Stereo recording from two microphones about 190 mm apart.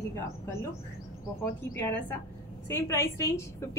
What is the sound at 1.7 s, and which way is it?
A woman's voice, 10° left (ahead or behind).